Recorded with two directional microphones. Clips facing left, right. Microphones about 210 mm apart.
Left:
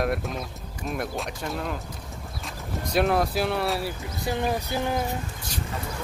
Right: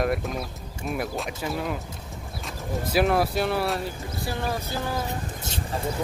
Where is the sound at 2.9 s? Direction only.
5° right (ahead or behind).